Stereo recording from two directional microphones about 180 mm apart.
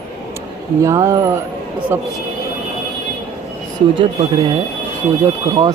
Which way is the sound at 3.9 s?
25° right (ahead or behind).